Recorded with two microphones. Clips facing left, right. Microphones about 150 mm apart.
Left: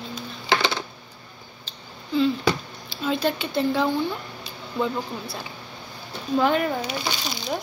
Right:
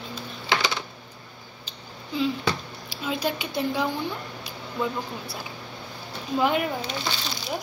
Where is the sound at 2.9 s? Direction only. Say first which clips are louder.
Left 4 dB; 10° right (ahead or behind).